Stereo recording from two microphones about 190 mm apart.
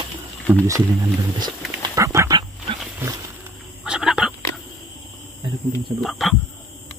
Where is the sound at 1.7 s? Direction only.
15° right (ahead or behind).